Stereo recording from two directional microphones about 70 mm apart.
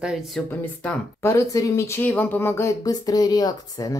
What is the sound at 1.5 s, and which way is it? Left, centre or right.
Speech, left.